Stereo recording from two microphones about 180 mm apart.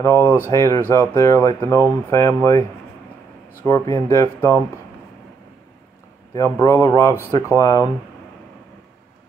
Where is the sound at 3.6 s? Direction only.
15° left (ahead or behind).